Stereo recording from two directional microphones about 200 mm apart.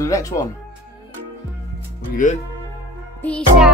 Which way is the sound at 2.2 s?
40° left (ahead or behind).